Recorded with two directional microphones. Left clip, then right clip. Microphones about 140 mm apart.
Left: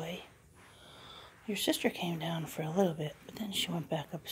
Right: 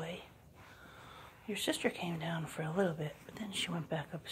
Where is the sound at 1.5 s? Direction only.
35° left (ahead or behind).